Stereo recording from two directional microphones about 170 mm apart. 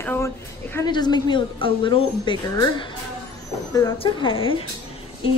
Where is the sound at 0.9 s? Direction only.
25° left (ahead or behind).